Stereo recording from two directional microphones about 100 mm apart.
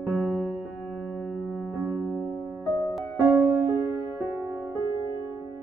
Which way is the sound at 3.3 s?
20° right (ahead or behind).